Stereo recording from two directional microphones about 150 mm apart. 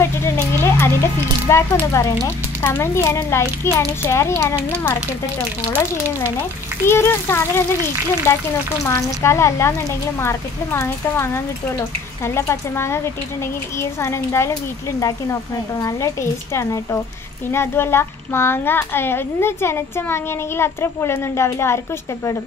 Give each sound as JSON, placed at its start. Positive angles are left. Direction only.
{"t": 0.0, "sound": "a child's voice", "side_deg": 15}
{"t": 6.9, "sound": "a child's voice", "side_deg": 15}